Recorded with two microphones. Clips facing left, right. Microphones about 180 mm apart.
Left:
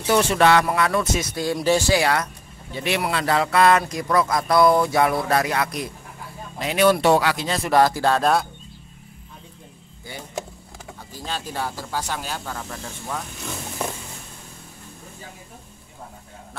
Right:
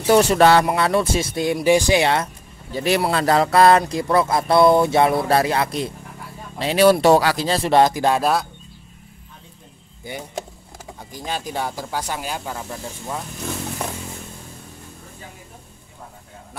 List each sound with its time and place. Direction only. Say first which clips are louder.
0.0 s speech: right 4 dB; 40° right (ahead or behind); by 2.2 s 25° right (ahead or behind)
2.7 s speech: right 5 dB; 40° right (ahead or behind); by 8.2 s 15° right (ahead or behind)
8.2 s speech: even; centre (ahead or behind)
11.1 s speech: right 3 dB; 15° right (ahead or behind)